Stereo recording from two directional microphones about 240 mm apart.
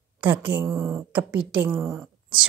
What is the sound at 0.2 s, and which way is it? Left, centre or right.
A woman's voice, centre.